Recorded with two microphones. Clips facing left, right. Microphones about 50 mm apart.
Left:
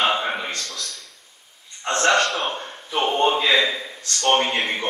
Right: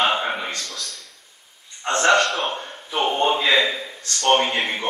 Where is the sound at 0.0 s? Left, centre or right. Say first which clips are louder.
Even; centre.